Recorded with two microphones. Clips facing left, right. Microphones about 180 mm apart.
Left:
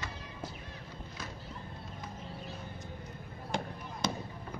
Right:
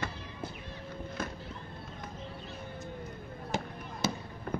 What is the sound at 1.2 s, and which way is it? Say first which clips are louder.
Music: right 7 dB; 55° right (ahead or behind).